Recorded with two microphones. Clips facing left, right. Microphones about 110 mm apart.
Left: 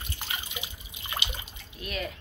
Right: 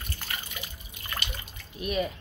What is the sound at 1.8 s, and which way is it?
Speech, 15° right (ahead or behind).